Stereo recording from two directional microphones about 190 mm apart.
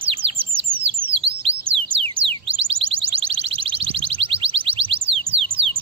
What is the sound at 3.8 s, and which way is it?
Music, 30° right (ahead or behind).